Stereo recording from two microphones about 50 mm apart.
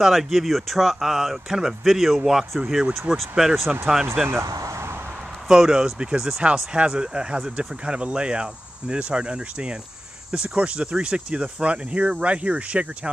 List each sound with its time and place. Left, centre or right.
0.0 s speech: centre
4.4 s a sound: right
5.5 s speech: centre